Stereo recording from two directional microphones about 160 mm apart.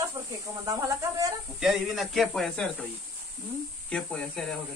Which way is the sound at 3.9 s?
5° left (ahead or behind).